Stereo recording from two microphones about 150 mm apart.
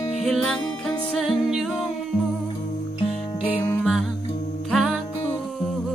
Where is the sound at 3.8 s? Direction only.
Centre (ahead or behind).